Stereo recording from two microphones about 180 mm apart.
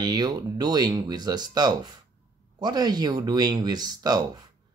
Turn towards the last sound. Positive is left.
turn(degrees=-20)  # may be behind; listen again after turning